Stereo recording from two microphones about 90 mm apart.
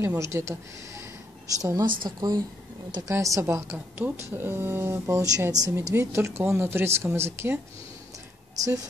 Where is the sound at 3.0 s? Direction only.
35° right (ahead or behind).